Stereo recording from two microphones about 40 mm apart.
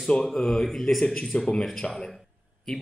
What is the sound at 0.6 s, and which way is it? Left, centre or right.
A man's voice, centre.